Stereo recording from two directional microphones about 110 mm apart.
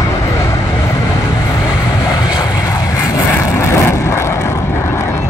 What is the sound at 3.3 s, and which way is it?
Vehicle, 25° left (ahead or behind).